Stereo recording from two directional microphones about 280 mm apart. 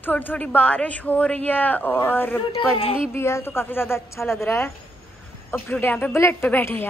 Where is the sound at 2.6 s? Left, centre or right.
Centre.